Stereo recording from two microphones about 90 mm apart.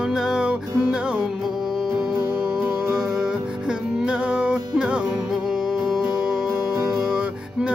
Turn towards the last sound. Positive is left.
turn(degrees=-5)  # may be behind; listen again after turning